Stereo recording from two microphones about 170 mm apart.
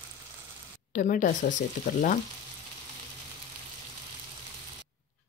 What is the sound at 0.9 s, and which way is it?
Speech, 50° left (ahead or behind).